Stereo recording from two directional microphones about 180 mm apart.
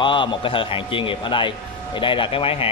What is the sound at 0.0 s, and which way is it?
A man's voice, 25° left (ahead or behind).